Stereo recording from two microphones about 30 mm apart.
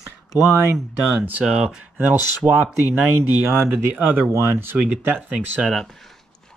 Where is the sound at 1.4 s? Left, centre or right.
Right.